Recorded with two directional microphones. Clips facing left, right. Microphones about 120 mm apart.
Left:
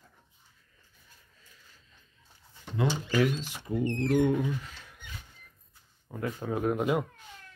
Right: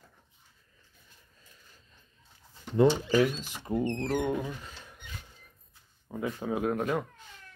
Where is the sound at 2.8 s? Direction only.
40° right (ahead or behind).